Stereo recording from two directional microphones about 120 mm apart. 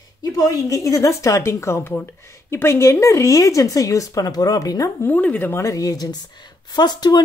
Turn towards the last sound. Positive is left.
turn(degrees=35)  # may be behind; listen again after turning